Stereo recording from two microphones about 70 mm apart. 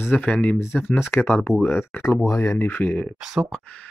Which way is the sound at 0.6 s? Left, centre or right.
Left.